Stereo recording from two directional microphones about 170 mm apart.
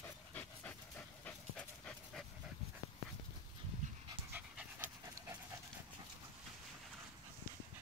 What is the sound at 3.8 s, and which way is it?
Dog, 45° right (ahead or behind).